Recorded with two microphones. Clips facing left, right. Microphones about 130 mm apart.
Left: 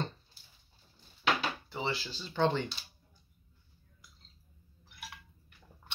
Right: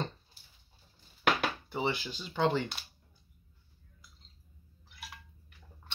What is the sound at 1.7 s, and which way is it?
Speech, 15° right (ahead or behind).